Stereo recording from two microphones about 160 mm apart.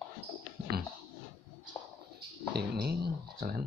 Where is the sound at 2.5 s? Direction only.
85° right; by 3.7 s 70° right (ahead or behind).